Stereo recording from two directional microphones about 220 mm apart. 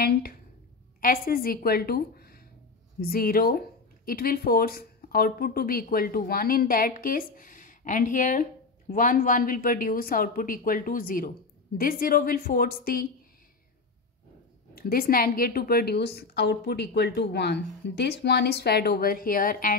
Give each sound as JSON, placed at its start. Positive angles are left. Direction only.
{"t": 0.0, "sound": "a woman's voice", "side_deg": 45}
{"t": 14.8, "sound": "a woman's voice", "side_deg": 40}